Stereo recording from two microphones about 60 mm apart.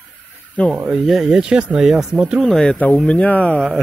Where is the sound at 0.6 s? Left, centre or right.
Left.